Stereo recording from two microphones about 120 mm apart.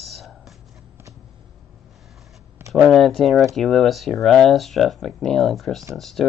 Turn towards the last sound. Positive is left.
turn(degrees=0)  # may be behind; listen again after turning